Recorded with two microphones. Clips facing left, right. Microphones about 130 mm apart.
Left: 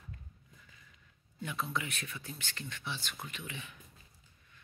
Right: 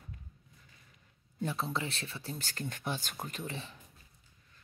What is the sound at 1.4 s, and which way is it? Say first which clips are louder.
Speech: right 3 dB; 35° right (ahead or behind).